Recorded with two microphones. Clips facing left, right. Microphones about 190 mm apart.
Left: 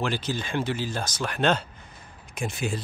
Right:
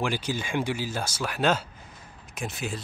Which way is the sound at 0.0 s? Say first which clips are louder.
Even; 10° right (ahead or behind).